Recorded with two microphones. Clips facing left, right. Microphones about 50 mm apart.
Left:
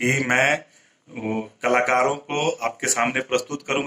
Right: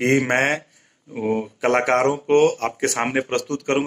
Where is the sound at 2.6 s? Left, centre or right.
Left.